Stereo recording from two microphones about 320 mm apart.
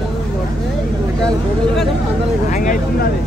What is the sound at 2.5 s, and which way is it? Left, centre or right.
Speech, left.